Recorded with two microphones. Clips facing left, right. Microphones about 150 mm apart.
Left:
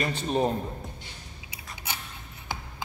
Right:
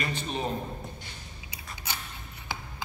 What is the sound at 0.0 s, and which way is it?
Speech, 45° left (ahead or behind).